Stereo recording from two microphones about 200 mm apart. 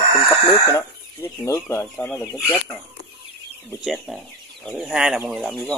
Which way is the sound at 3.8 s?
Centre (ahead or behind).